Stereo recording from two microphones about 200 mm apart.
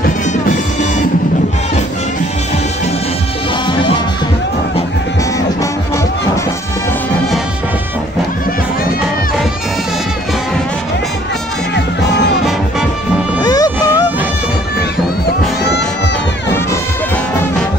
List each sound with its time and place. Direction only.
13.4 s music: 20° left (ahead or behind)
15.2 s music: 55° left (ahead or behind)